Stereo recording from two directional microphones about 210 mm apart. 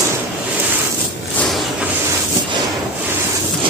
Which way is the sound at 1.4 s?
Centre (ahead or behind).